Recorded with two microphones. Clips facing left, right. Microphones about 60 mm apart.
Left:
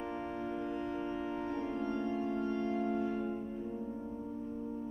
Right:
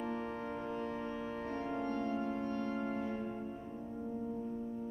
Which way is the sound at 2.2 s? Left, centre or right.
Right.